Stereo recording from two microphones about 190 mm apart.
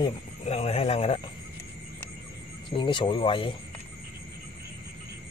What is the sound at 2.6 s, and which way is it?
Speech, 25° left (ahead or behind).